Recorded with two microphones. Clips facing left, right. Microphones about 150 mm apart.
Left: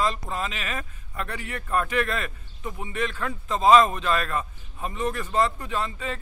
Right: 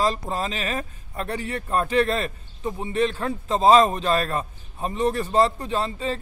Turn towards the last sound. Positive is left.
turn(degrees=-30)  # may be behind; listen again after turning